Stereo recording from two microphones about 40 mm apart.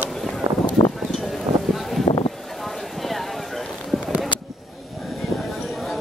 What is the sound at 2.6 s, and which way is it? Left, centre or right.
Clip-clop, centre.